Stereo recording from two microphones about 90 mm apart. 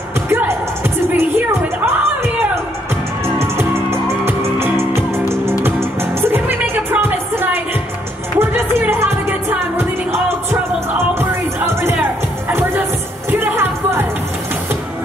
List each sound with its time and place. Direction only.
0.3 s music: 25° right (ahead or behind)
3.9 s music: 30° right (ahead or behind)
11.1 s music: 25° right (ahead or behind)